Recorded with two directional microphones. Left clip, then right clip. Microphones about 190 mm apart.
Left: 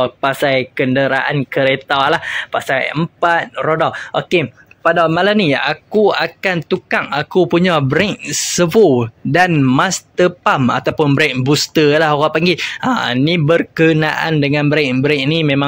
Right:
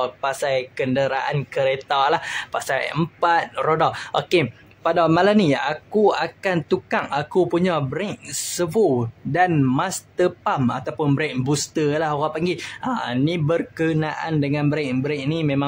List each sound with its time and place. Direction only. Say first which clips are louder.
0.0 s speech: left 8 dB; 15° left (ahead or behind)
9.5 s speech: left 8 dB; 10° left (ahead or behind)